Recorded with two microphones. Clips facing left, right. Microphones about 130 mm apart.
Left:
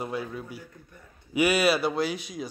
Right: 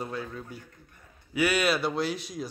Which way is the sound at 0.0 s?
10° left (ahead or behind).